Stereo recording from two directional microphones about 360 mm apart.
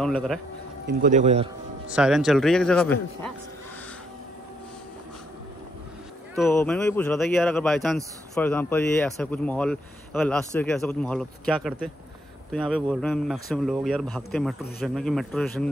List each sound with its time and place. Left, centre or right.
0.0 s speech: centre
0.8 s a man's voice: right
1.9 s speech: centre
6.3 s speech: centre